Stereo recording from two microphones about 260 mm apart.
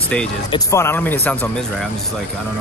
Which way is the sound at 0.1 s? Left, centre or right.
Centre.